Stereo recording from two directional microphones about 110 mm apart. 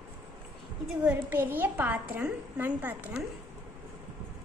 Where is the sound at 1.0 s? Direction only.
15° right (ahead or behind).